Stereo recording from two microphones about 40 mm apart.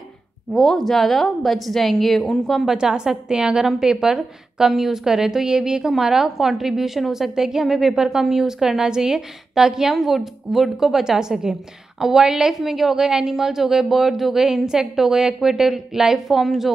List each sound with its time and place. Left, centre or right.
0.6 s a woman's voice: centre
2.7 s a woman's voice: centre